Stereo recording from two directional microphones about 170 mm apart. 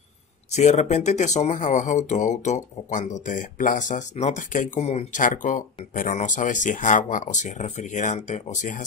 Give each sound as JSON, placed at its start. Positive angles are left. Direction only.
{"t": 0.5, "sound": "speech", "side_deg": 45}